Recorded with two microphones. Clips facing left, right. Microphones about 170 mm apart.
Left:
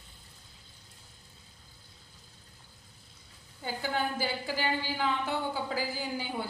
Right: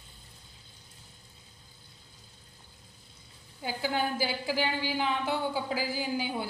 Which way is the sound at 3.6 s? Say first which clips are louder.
Right 2 dB; 10° right (ahead or behind).